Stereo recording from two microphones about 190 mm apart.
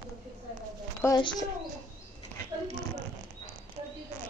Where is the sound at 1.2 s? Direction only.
25° left (ahead or behind).